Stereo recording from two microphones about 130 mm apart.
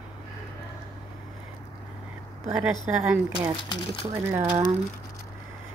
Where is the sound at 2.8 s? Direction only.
10° right (ahead or behind).